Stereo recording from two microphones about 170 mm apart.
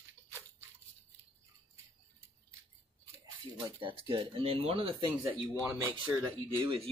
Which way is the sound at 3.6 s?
30° right (ahead or behind).